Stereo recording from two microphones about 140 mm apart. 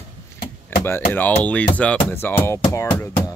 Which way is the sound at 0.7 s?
15° left (ahead or behind).